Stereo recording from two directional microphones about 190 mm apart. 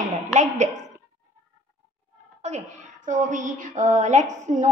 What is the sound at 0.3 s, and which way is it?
Speech, 40° right (ahead or behind).